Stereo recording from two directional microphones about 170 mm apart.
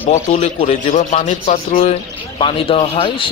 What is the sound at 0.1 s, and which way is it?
Speech, 40° left (ahead or behind).